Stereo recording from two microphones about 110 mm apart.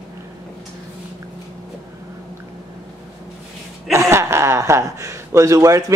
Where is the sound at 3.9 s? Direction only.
25° right (ahead or behind).